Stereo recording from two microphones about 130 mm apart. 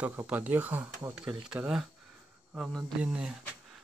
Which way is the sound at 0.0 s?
15° right (ahead or behind).